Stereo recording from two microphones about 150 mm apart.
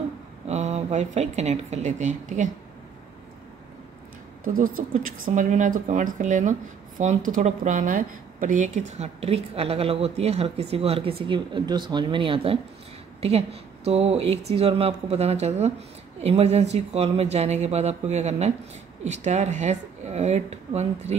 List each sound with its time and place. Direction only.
0.5 s a woman's voice: 50° right (ahead or behind)
4.8 s a woman's voice: 55° right (ahead or behind)